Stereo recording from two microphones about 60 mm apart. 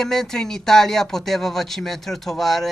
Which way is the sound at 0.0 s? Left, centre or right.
Centre.